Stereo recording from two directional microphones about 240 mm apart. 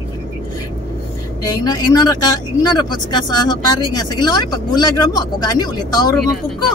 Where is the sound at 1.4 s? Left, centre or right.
Centre.